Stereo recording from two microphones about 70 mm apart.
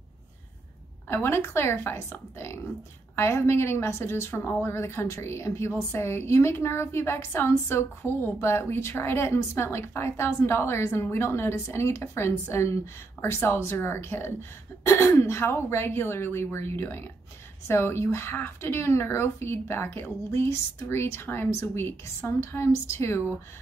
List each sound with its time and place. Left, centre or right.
1.0 s a woman's voice: left